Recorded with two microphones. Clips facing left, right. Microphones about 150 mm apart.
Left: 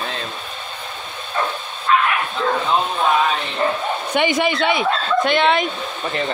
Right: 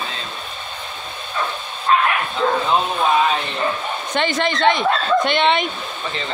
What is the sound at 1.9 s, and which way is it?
Bow-wow, 35° right (ahead or behind).